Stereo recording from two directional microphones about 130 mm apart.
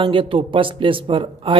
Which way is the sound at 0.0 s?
45° right (ahead or behind).